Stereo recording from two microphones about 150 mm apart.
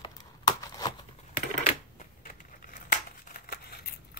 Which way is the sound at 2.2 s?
65° left (ahead or behind).